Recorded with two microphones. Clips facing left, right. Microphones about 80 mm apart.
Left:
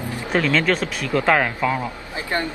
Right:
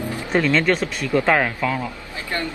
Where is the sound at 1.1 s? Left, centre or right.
Centre.